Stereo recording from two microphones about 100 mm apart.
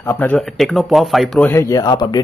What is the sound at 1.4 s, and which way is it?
Speech, 20° left (ahead or behind).